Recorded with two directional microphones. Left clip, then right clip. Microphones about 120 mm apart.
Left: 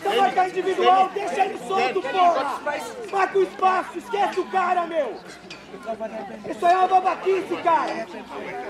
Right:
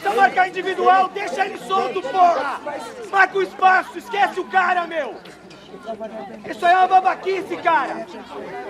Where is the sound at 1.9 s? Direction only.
20° right (ahead or behind).